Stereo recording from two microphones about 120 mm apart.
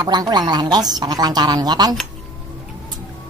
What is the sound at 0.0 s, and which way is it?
Speech, 35° right (ahead or behind).